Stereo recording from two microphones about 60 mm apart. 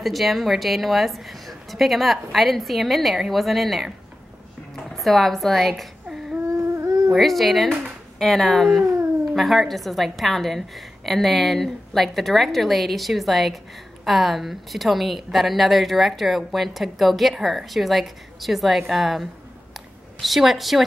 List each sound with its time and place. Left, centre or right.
0.0 s speech: centre
4.9 s speech: centre
6.4 s humming: right
7.1 s speech: centre
19.7 s a sound: centre